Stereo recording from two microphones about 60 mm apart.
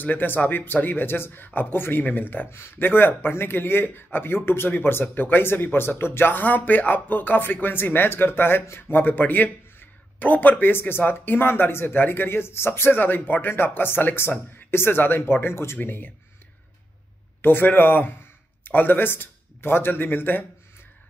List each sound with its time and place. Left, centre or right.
0.0 s speech: left
17.4 s speech: left